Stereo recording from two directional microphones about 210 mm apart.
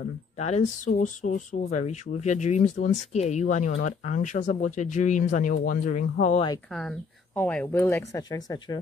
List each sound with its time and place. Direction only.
0.4 s speech: 35° left (ahead or behind)
6.7 s speech: centre (ahead or behind)